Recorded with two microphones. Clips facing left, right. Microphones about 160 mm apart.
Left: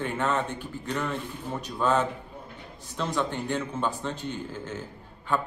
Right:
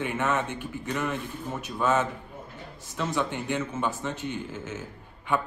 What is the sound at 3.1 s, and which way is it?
Speech, 15° right (ahead or behind).